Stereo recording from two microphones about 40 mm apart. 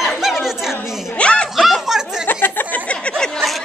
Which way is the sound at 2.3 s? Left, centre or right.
Left.